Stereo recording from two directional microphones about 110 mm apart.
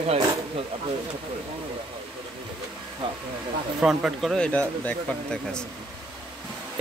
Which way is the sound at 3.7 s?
5° right (ahead or behind).